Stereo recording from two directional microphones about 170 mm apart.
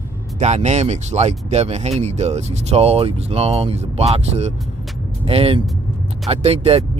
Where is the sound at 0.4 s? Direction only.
40° right (ahead or behind).